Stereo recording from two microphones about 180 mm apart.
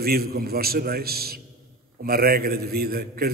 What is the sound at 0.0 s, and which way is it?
A man's voice, 60° right (ahead or behind).